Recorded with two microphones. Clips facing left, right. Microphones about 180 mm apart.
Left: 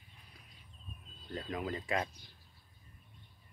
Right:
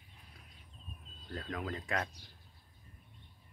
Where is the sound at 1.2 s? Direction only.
10° left (ahead or behind).